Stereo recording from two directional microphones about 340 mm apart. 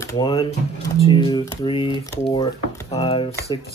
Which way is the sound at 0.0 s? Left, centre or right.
Centre.